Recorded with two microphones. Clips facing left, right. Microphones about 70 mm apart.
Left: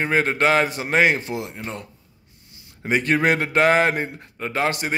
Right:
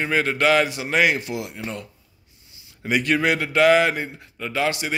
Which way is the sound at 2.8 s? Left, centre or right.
Left.